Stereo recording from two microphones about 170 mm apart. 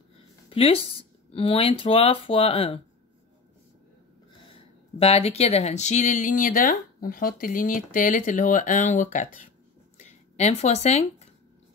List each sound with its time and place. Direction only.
0.5 s speech: 35° left (ahead or behind)
4.9 s speech: 35° left (ahead or behind)
9.9 s a sound: 40° left (ahead or behind)